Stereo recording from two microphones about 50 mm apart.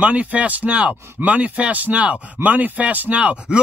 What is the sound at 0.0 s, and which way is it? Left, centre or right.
Speech, right.